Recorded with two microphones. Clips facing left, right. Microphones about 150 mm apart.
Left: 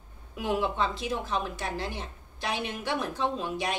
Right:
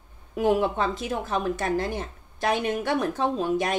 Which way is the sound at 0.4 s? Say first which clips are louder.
Right 6 dB; 45° right (ahead or behind).